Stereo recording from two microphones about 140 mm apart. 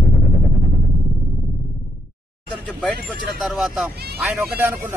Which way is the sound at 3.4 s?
Centre (ahead or behind).